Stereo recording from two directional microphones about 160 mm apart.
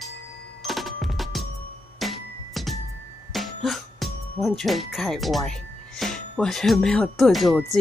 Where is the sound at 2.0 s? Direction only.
Centre (ahead or behind).